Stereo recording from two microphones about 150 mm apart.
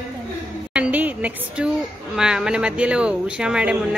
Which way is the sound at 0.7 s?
10° right (ahead or behind).